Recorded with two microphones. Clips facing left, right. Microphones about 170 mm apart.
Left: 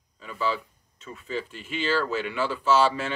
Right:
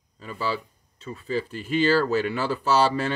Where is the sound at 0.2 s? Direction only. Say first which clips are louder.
Even; 35° right (ahead or behind).